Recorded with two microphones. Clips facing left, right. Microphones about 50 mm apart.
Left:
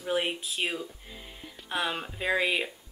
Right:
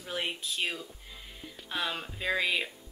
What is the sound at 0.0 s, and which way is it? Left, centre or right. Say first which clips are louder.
Speech: left 6 dB; centre.